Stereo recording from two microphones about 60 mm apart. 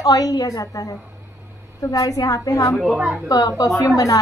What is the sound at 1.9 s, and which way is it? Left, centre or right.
A woman's voice, left.